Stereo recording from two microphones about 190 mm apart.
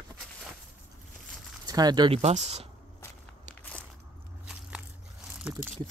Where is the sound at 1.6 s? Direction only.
20° right (ahead or behind).